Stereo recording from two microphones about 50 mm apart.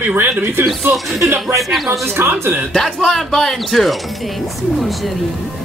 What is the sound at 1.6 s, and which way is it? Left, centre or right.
Speech, centre.